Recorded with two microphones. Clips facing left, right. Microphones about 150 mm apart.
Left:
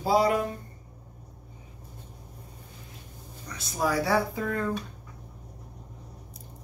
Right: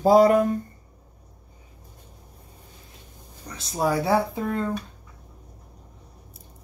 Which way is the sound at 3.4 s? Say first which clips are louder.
Right 4 dB; 30° right (ahead or behind).